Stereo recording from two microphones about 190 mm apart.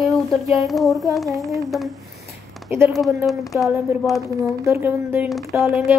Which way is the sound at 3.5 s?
Centre (ahead or behind).